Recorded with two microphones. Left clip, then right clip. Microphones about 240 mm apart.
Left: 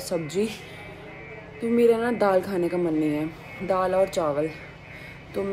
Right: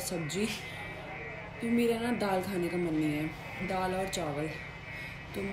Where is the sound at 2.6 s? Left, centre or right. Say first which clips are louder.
Left 7 dB; left.